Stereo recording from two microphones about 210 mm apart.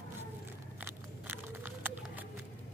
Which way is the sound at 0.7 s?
10° right (ahead or behind).